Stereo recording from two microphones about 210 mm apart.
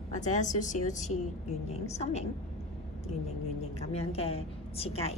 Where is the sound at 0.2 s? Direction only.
35° left (ahead or behind).